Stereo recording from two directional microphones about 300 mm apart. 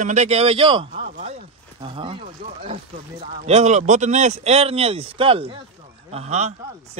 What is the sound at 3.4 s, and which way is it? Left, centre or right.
Speech, right.